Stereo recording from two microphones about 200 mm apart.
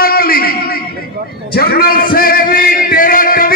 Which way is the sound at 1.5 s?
50° left (ahead or behind).